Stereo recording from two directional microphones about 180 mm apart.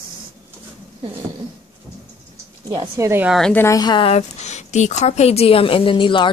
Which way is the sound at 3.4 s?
5° left (ahead or behind).